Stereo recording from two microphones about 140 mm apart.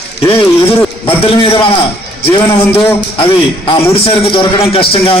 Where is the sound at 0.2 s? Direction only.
40° left (ahead or behind).